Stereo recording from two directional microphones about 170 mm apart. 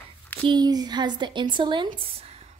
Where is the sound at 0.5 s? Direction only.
25° right (ahead or behind).